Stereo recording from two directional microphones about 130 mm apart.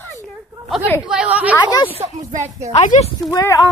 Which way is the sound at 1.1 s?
10° right (ahead or behind).